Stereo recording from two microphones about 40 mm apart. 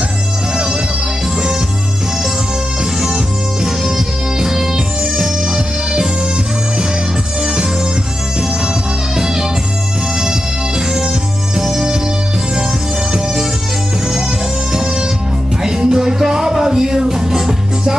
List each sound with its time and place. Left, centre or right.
3.6 s music: centre
9.1 s music: centre
11.5 s music: centre
14.7 s music: centre